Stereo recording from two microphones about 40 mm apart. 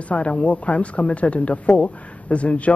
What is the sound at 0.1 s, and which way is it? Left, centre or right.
Speech, left.